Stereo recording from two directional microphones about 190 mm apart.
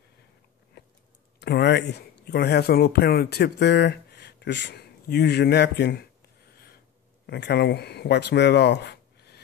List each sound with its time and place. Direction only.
0.8 s a sound: 65° left (ahead or behind)
1.4 s speech: 60° left (ahead or behind)
7.2 s speech: 65° left (ahead or behind)